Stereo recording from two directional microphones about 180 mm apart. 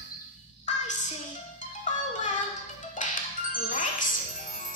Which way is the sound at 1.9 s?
45° left (ahead or behind).